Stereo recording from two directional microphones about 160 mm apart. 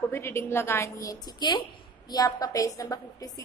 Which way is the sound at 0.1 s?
15° left (ahead or behind).